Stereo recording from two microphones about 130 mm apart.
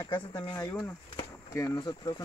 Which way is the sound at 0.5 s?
20° left (ahead or behind).